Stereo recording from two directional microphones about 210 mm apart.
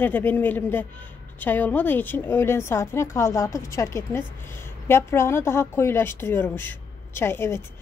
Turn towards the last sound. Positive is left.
turn(degrees=10)  # may be behind; listen again after turning